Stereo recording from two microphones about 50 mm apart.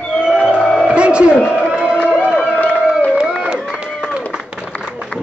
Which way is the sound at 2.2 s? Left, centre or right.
Right.